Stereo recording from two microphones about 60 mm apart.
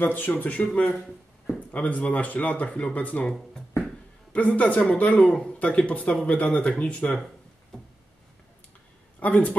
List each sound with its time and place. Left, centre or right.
0.0 s speech: left
3.7 s a sound: left
5.3 s speech: centre
9.2 s speech: left